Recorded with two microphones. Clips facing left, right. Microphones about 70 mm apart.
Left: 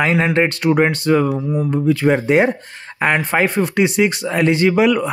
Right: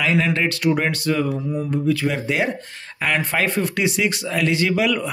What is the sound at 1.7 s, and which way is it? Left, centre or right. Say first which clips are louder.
Speech: left 6 dB; left.